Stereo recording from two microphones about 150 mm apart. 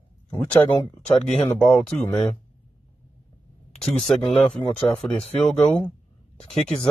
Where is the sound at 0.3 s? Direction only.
15° left (ahead or behind).